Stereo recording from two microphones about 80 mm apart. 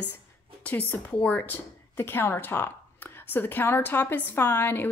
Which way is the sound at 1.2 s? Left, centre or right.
Left.